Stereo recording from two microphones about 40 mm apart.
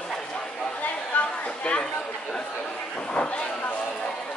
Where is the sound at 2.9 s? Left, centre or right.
Left.